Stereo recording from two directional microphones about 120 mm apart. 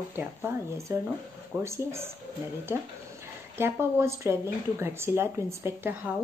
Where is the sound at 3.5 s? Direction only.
20° right (ahead or behind).